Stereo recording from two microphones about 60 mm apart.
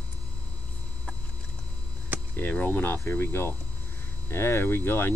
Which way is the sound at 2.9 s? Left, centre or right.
Left.